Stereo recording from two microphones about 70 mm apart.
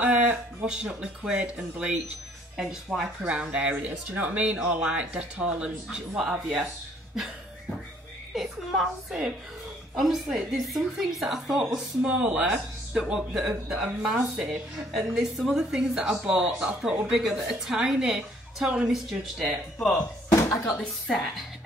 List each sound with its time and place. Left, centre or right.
0.0 s a sound: right
0.8 s a woman's voice: centre
3.2 s speech: centre
8.4 s a woman's voice: centre
20.2 s a sound: left
21.1 s a woman's voice: centre